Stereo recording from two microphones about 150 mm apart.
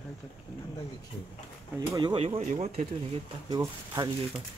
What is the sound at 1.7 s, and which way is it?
Speech, 25° right (ahead or behind).